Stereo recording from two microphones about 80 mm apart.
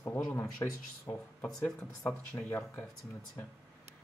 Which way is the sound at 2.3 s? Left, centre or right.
Left.